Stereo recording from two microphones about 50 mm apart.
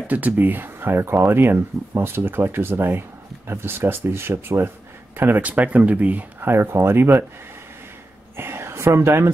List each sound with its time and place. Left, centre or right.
0.0 s speech: right
5.4 s speech: right
6.4 s speech: right
8.4 s a sound: right